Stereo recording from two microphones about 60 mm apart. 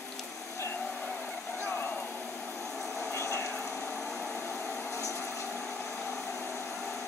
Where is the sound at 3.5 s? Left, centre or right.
Centre.